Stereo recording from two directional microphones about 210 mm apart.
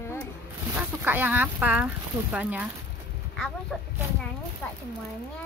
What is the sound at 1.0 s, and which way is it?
Speech, 10° right (ahead or behind).